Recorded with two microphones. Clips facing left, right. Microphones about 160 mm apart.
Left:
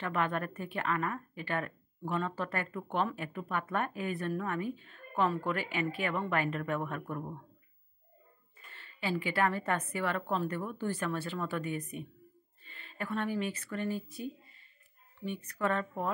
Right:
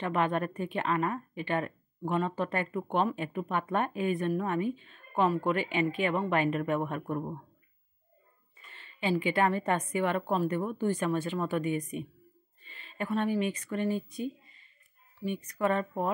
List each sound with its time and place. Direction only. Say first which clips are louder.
0.0 s a woman's voice: right 4 dB; 20° right (ahead or behind)
8.7 s a sound: right 4 dB; 20° right (ahead or behind)
9.2 s a woman's voice: right 2 dB; 20° right (ahead or behind)